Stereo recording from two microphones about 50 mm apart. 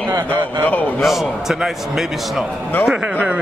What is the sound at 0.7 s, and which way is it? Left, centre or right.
Speech, left.